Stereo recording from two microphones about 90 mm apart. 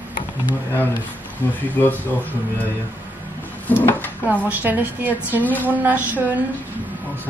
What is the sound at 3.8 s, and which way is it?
Speech, 20° left (ahead or behind).